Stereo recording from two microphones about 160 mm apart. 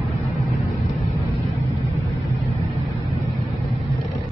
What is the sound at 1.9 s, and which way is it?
Vehicle, 20° right (ahead or behind).